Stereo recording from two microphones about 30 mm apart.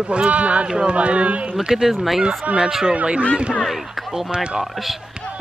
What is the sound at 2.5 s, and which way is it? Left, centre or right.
Speech, right.